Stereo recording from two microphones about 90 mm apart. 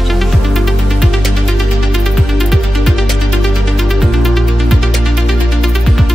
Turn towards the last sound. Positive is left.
turn(degrees=0)  # may be behind; listen again after turning